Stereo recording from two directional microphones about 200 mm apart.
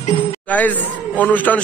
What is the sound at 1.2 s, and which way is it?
Speech, 10° left (ahead or behind).